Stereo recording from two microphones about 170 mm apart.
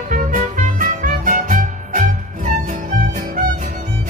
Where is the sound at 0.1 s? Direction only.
50° right (ahead or behind).